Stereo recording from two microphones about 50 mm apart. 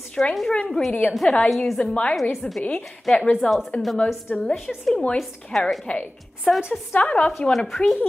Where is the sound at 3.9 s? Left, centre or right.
Left.